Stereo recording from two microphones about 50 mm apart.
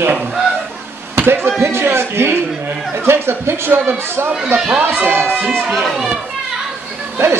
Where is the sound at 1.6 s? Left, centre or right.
Right.